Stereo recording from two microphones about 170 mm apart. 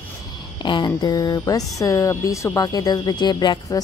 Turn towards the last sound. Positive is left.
turn(degrees=25)  # may be behind; listen again after turning